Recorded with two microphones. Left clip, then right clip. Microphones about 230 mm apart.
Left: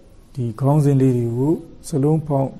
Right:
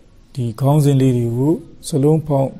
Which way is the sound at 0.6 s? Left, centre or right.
Right.